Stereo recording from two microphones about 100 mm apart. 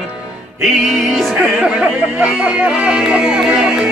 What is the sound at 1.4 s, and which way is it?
Speech, 10° right (ahead or behind).